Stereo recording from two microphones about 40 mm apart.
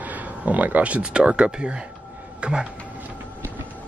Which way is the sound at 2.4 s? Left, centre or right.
Right.